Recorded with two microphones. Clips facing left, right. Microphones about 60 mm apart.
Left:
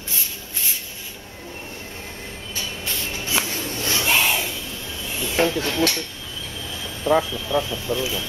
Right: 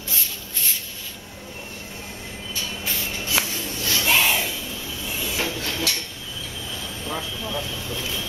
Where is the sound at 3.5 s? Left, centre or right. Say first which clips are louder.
Left 2 dB; left.